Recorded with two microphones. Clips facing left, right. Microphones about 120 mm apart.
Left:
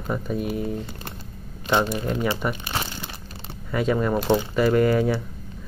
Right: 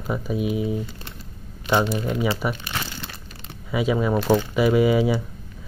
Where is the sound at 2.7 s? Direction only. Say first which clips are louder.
Left 2 dB; 25° left (ahead or behind).